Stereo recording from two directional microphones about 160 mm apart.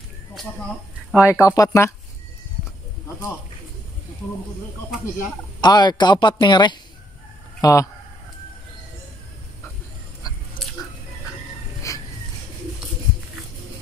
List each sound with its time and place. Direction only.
1.2 s speech: 20° left (ahead or behind)
5.6 s speech: 25° left (ahead or behind)
11.9 s a sound: 20° left (ahead or behind)